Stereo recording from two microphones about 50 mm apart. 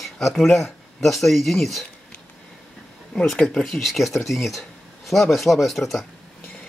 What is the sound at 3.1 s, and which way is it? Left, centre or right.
Speech, centre.